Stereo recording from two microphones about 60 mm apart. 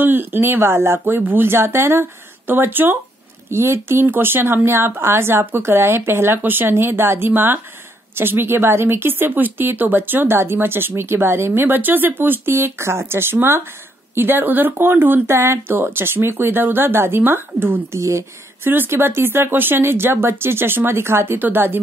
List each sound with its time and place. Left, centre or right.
0.0 s speech: right
17.9 s speech: right
18.6 s speech: right